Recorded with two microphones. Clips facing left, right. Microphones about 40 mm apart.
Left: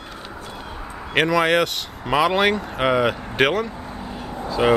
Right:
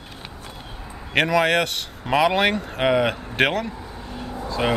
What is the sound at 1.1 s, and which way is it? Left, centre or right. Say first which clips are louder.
Speech: left 1 dB; centre.